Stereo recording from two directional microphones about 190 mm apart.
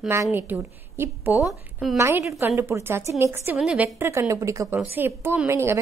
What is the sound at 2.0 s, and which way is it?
A woman's voice, 15° right (ahead or behind).